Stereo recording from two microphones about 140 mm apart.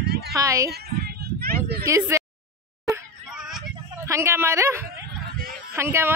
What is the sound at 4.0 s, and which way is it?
Speech, 20° right (ahead or behind).